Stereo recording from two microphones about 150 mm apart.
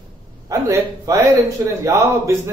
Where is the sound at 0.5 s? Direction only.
20° right (ahead or behind).